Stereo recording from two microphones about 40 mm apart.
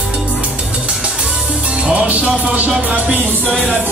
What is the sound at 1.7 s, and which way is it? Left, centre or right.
Music, right.